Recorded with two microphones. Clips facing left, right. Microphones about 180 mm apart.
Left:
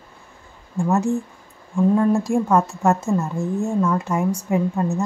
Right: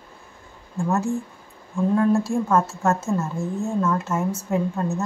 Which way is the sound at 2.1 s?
15° left (ahead or behind).